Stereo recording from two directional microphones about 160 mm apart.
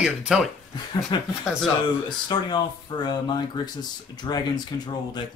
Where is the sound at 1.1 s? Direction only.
30° left (ahead or behind).